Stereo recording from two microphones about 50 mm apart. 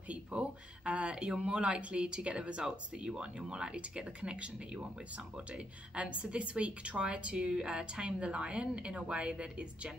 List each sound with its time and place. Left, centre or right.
0.1 s speech: right